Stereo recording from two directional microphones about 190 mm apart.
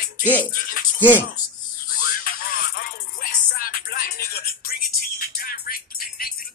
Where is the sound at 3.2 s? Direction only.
50° left (ahead or behind).